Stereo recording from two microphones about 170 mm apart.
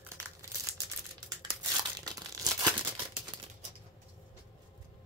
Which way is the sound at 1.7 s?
20° right (ahead or behind).